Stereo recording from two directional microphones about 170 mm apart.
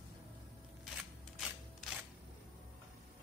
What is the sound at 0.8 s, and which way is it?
Scissors, centre (ahead or behind).